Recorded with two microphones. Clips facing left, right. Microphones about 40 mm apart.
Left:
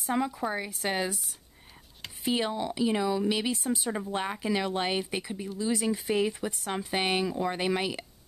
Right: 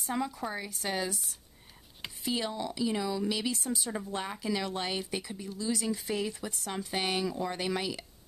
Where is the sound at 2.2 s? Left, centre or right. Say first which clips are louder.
Left 4 dB; left.